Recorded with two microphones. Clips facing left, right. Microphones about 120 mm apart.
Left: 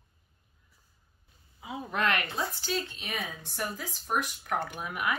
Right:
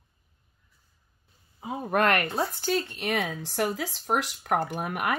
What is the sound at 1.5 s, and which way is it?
Speech, 45° right (ahead or behind).